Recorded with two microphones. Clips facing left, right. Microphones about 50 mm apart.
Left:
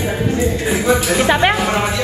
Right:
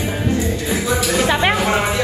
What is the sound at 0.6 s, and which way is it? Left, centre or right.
Music, left.